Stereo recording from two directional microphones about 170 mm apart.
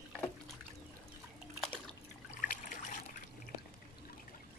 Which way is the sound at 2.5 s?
50° left (ahead or behind).